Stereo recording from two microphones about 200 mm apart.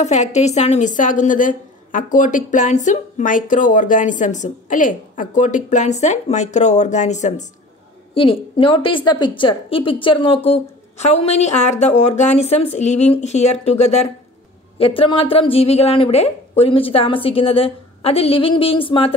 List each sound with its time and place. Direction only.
0.0 s a woman's voice: 35° left (ahead or behind)